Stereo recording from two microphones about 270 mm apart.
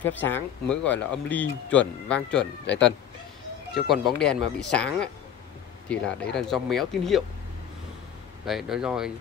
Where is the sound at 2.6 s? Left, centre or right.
Left.